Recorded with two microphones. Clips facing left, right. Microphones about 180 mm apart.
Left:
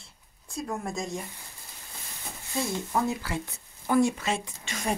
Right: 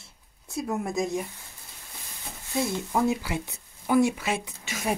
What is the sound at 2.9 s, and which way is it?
Speech, 15° right (ahead or behind).